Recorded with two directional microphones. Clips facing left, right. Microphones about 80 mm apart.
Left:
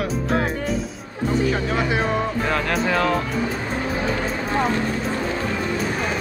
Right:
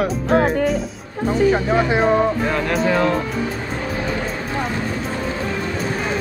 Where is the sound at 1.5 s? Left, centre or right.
Right.